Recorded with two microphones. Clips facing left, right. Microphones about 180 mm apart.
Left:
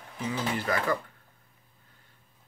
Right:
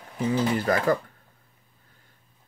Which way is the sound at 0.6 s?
45° right (ahead or behind).